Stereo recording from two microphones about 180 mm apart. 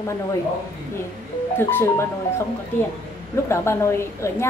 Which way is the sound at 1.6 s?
10° left (ahead or behind).